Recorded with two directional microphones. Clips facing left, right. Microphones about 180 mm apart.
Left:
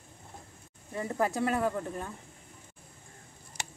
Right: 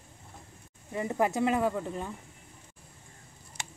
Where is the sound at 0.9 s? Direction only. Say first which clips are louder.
Right 2 dB; 15° right (ahead or behind).